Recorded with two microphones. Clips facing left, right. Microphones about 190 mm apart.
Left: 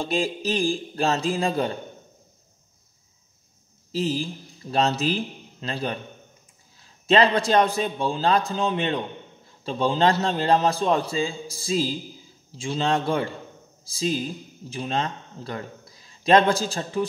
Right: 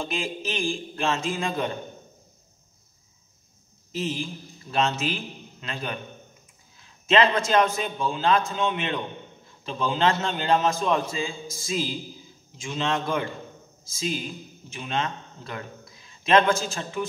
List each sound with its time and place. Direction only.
0.0 s a man's voice: 35° left (ahead or behind)
3.9 s a man's voice: 35° left (ahead or behind)